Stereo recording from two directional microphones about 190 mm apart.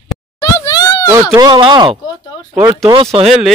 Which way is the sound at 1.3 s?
25° right (ahead or behind).